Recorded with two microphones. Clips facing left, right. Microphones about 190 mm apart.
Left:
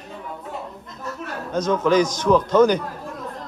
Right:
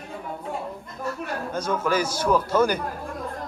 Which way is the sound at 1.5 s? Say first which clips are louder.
Left 7 dB; 10° right (ahead or behind).